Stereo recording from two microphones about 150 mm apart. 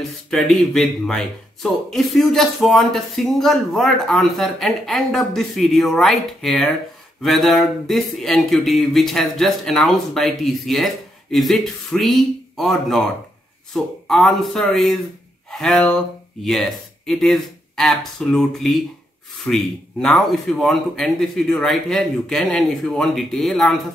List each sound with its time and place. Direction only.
0.3 s speech: 5° left (ahead or behind)